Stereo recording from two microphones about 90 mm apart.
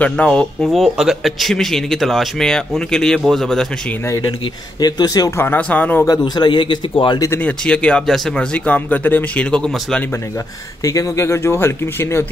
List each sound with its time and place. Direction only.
0.0 s speech: 10° left (ahead or behind)
4.7 s speech: 50° left (ahead or behind)
5.4 s speech: 20° left (ahead or behind)
6.0 s speech: 45° left (ahead or behind)
7.3 s speech: 15° left (ahead or behind)
10.8 s speech: 35° left (ahead or behind)